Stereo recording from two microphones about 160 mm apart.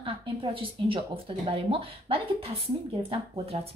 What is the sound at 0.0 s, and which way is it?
A woman's voice, 35° right (ahead or behind).